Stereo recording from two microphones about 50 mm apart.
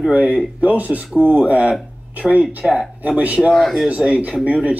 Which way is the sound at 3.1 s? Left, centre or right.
Right.